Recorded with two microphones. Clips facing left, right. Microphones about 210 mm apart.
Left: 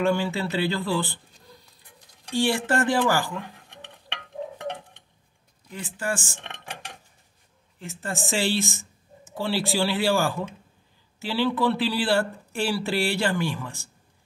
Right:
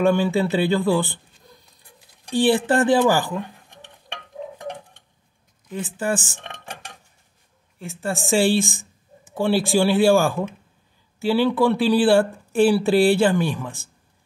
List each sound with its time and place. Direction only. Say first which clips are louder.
0.1 s speech: right 6 dB; 15° right (ahead or behind)
2.3 s speech: right 5 dB; 20° right (ahead or behind)
5.8 s speech: right 6 dB; 20° right (ahead or behind)
7.8 s speech: right 5 dB; 15° right (ahead or behind)